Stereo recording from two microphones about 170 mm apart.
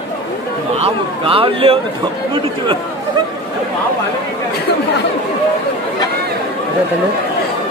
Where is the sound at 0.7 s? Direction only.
35° right (ahead or behind).